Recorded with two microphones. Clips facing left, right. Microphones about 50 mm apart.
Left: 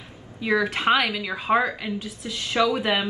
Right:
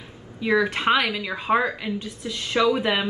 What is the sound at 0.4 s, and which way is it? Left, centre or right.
A woman's voice, centre.